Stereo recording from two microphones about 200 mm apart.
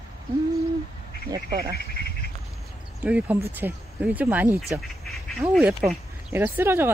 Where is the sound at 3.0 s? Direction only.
5° right (ahead or behind).